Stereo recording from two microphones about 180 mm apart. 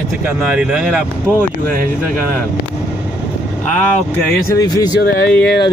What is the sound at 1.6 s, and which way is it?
Speech, 50° right (ahead or behind).